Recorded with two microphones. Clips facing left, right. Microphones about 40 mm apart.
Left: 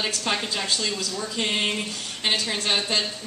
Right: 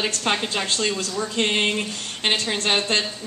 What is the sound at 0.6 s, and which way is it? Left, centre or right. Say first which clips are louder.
Speech: right 3 dB; right.